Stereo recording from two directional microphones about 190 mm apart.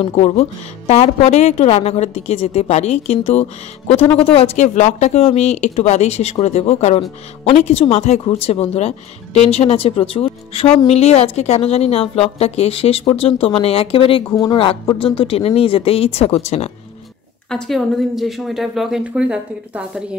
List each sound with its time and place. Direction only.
0.0 s speech: 35° left (ahead or behind)
17.5 s a woman's voice: centre (ahead or behind)